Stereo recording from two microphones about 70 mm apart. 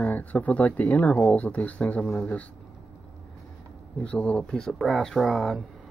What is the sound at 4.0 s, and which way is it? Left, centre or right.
Speech, centre.